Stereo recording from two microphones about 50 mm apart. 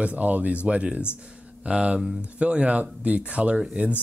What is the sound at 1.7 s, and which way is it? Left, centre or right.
Speech, centre.